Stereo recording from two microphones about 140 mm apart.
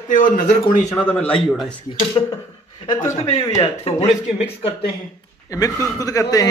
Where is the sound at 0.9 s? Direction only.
10° left (ahead or behind).